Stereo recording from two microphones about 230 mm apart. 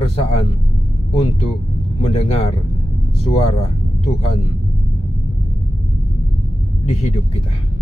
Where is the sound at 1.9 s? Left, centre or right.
Left.